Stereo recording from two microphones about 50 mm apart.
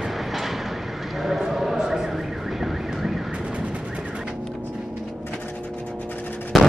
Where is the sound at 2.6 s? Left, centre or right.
Centre.